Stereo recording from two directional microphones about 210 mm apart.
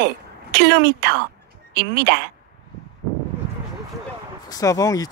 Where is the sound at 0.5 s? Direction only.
55° right (ahead or behind).